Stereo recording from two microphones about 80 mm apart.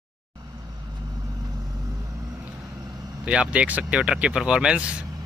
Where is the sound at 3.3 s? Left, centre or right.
Centre.